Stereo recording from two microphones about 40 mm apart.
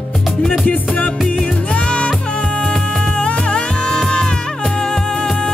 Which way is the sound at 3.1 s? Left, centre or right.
Left.